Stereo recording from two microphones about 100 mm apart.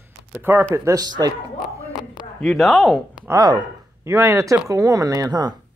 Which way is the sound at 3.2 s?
40° right (ahead or behind).